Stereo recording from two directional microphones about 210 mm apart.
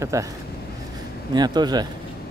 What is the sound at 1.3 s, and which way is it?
Speech, 20° right (ahead or behind).